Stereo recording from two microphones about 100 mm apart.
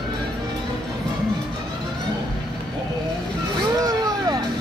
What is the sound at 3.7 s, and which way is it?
Vehicle, 40° right (ahead or behind).